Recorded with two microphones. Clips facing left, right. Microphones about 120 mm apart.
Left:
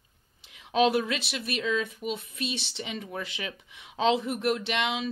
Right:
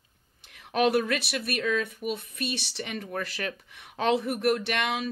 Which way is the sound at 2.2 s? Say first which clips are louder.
Right 1 dB; 30° left (ahead or behind).